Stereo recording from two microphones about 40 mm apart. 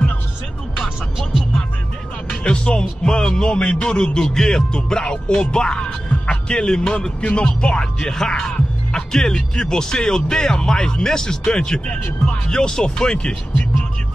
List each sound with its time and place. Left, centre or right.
2.4 s speech: left